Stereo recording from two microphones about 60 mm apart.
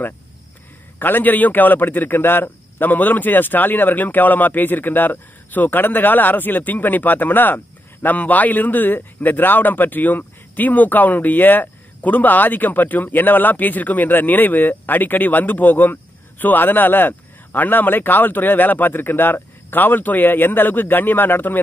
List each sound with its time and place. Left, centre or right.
0.9 s a man's voice: left